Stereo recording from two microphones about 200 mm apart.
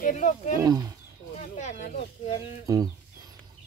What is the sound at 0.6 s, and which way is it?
Speech, 20° right (ahead or behind).